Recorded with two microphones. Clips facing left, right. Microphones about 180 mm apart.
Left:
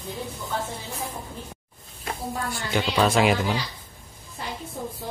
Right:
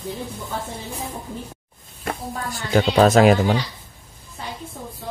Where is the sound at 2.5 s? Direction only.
40° right (ahead or behind).